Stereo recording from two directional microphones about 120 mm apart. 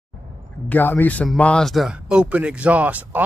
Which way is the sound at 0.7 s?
15° left (ahead or behind).